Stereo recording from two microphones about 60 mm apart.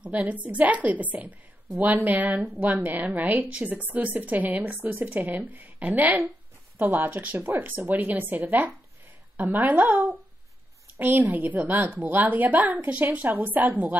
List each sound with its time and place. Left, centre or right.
0.0 s a woman's voice: right